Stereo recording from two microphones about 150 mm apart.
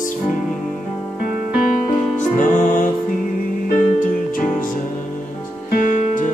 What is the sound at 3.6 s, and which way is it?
Music, 70° left (ahead or behind).